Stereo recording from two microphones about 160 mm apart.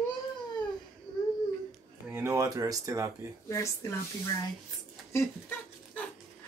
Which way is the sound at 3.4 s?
20° left (ahead or behind).